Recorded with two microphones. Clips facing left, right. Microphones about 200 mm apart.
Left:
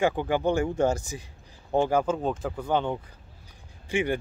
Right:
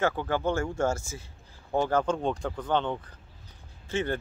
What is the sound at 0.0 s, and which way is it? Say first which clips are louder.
Speech: left 3 dB; 15° left (ahead or behind).